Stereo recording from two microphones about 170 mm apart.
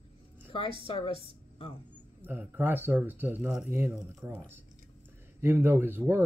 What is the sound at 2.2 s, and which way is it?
Speech, 10° right (ahead or behind).